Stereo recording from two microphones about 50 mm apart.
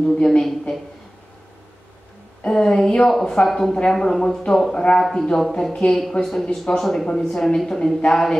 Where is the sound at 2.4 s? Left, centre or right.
Centre.